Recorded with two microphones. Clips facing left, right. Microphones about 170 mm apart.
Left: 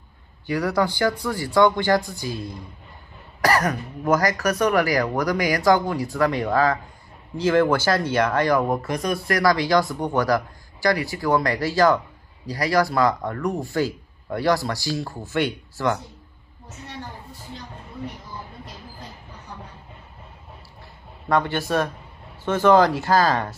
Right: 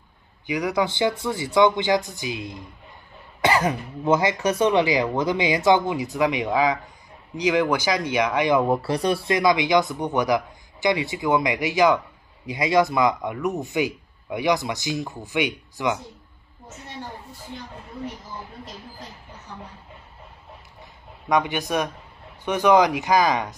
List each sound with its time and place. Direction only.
0.5 s speech: 20° right (ahead or behind)
8.8 s speech: 30° right (ahead or behind); by 16.0 s 15° right (ahead or behind)
21.3 s speech: 15° right (ahead or behind)